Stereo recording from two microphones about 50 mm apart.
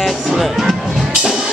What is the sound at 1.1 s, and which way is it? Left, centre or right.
Music, centre.